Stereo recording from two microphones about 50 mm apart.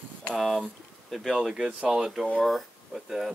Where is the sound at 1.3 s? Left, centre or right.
Centre.